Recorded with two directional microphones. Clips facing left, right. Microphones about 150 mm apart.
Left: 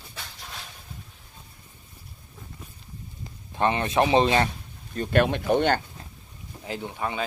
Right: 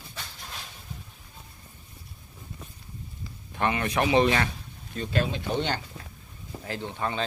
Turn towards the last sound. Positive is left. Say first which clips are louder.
# left 1 dB
turn(degrees=15)  # may be behind; listen again after turning